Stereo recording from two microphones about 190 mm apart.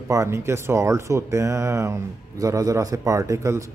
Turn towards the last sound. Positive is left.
turn(degrees=-15)  # may be behind; listen again after turning